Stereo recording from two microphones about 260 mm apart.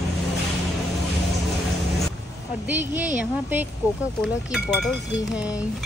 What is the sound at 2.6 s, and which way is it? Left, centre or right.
A woman's voice, centre.